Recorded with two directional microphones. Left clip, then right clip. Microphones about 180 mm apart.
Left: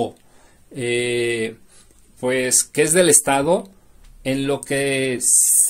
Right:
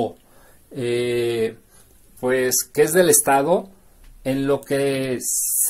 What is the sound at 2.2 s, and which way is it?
Speech, 25° left (ahead or behind).